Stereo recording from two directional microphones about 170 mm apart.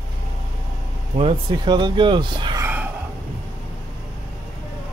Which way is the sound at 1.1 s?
30° right (ahead or behind).